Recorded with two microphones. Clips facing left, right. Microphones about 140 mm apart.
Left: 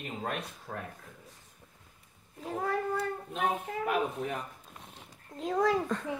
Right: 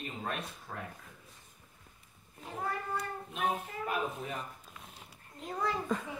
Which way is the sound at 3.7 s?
75° left (ahead or behind).